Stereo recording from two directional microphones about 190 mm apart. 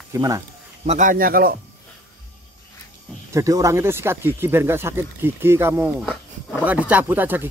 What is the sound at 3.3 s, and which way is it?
Speech, 15° right (ahead or behind).